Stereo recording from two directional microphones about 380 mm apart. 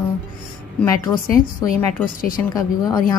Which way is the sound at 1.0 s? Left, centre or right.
Centre.